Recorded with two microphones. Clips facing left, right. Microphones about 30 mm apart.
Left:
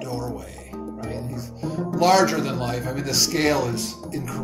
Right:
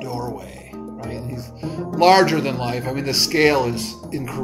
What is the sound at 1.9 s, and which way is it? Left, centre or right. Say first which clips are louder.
Speech: right 4 dB; right.